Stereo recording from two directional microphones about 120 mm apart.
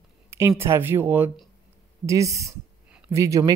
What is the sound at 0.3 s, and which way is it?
Speech, 20° right (ahead or behind).